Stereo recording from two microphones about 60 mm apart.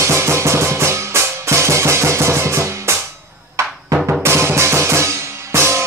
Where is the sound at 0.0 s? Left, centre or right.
Right.